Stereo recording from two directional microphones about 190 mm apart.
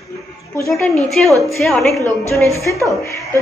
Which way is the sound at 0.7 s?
5° left (ahead or behind).